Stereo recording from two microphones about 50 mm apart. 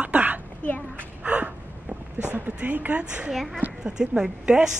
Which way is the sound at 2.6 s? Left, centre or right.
Right.